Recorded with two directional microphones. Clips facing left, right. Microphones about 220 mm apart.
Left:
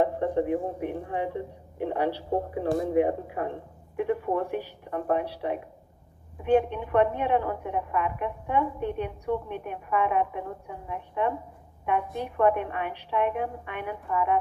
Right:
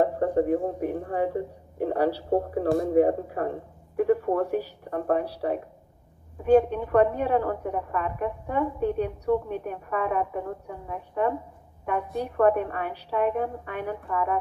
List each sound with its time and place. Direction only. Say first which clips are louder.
0.0 s speech: right 2 dB; 40° right (ahead or behind)